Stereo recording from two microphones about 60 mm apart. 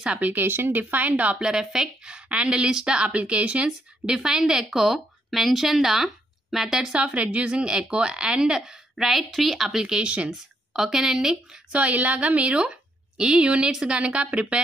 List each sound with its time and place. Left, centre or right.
0.0 s speech: right
1.5 s a woman's voice: centre
10.3 s a woman's voice: centre
11.7 s a woman's voice: right